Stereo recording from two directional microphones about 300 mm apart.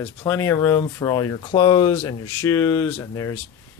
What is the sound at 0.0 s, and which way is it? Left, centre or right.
Speech, centre.